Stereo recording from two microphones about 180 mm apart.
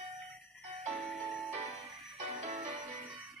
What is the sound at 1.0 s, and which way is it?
Music, centre (ahead or behind).